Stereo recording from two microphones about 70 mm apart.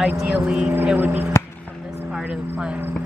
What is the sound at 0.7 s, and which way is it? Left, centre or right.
Speech, right.